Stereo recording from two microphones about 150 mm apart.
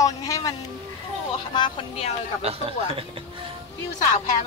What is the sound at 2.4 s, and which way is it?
Speech, 40° right (ahead or behind).